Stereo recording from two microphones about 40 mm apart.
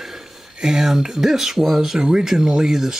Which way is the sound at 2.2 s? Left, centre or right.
Centre.